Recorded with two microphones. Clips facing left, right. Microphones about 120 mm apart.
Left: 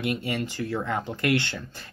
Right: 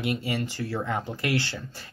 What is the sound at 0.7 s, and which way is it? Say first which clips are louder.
Speech: left 1 dB; 5° right (ahead or behind).